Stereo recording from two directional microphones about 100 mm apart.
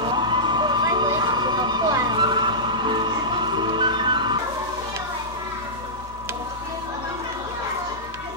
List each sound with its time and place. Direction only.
0.0 s emergency vehicle: 50° right (ahead or behind)